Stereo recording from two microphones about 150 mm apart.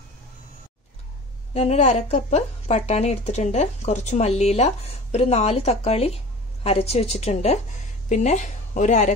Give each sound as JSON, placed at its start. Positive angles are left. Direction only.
{"t": 1.5, "sound": "speech", "side_deg": 45}